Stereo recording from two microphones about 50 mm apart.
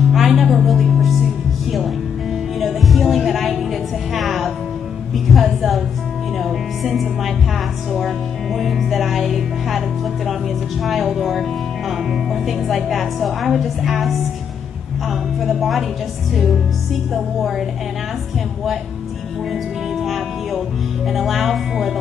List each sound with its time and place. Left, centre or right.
0.1 s music: centre
2.6 s music: centre
5.3 s a woman's voice: centre
8.5 s a woman's voice: centre
17.1 s a woman's voice: centre
19.5 s music: centre
21.1 s a woman's voice: centre